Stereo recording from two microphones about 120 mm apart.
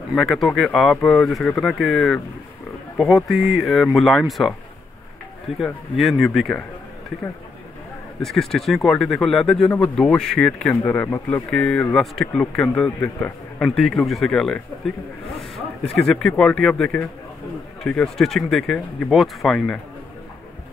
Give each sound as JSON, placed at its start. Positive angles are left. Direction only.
{"t": 0.1, "sound": "a man's voice", "side_deg": 0}
{"t": 5.6, "sound": "a man's voice", "side_deg": 0}
{"t": 8.2, "sound": "a man's voice", "side_deg": 5}
{"t": 11.1, "sound": "speech", "side_deg": 20}
{"t": 11.5, "sound": "a man's voice", "side_deg": 10}
{"t": 16.1, "sound": "a man's voice", "side_deg": 5}